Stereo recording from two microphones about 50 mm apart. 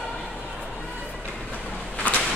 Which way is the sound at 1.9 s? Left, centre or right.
Left.